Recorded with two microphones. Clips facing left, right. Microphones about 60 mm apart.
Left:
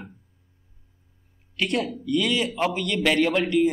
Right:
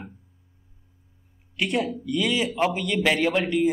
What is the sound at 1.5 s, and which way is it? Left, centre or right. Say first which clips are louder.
A man's voice: even; centre.